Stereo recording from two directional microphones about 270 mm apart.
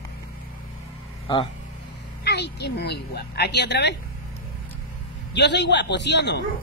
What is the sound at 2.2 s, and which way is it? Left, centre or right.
Speech, left.